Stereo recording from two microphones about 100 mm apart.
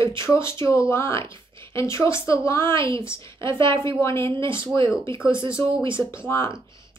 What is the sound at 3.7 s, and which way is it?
Speech, 25° left (ahead or behind).